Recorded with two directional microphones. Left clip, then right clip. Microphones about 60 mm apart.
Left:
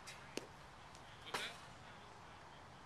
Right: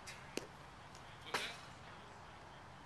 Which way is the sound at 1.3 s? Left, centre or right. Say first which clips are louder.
Right 3 dB; right.